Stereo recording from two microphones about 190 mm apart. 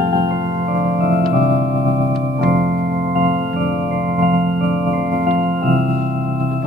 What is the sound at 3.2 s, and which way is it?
Music, 45° right (ahead or behind).